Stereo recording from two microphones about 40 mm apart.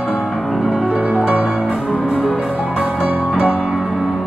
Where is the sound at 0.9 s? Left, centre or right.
Right.